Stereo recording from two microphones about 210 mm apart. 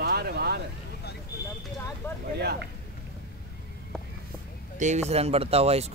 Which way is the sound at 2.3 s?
50° right (ahead or behind).